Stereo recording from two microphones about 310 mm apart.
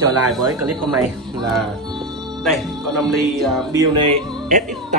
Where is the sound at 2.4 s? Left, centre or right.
Centre.